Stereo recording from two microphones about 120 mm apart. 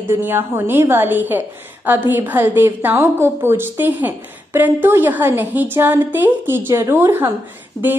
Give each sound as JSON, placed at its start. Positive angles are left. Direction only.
{"t": 0.1, "sound": "a woman's voice", "side_deg": -20}